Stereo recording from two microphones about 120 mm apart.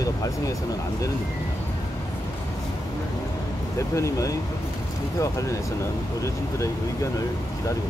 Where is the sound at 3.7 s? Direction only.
25° left (ahead or behind).